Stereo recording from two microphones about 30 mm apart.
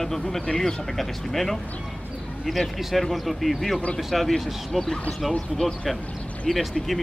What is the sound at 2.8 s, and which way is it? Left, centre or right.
Speech, centre.